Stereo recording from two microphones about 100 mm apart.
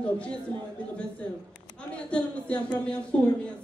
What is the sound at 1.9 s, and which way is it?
Speech, 10° left (ahead or behind).